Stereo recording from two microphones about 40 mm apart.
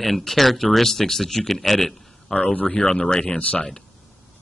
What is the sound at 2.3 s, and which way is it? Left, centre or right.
Speech, centre.